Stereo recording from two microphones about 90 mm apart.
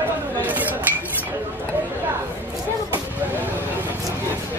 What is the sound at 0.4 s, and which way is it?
Cutlery, 20° right (ahead or behind).